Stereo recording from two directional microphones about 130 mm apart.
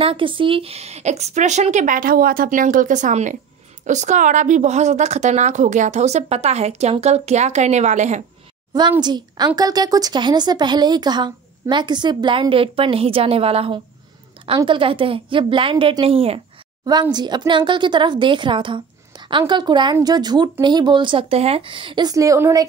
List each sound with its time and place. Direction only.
0.0 s a woman's voice: 45° right (ahead or behind); by 8.2 s 65° right (ahead or behind)
9.0 s a woman's voice: 35° right (ahead or behind)
16.8 s speech: 30° right (ahead or behind)